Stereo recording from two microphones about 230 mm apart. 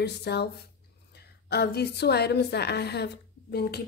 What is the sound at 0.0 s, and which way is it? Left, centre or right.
A woman's voice, left.